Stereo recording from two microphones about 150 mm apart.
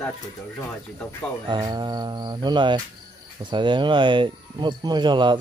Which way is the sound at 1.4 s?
30° right (ahead or behind).